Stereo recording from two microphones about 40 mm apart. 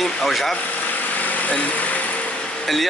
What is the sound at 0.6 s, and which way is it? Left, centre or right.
Vehicle, left.